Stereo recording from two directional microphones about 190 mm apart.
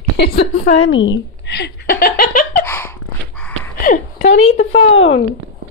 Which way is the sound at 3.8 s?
45° left (ahead or behind).